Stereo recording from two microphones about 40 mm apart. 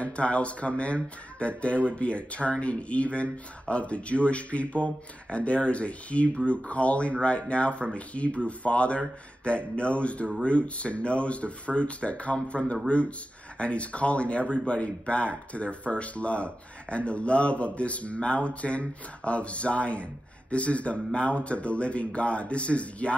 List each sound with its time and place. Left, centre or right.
0.0 s speech: left